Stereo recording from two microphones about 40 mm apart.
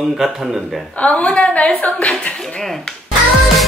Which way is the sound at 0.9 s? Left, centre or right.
Left.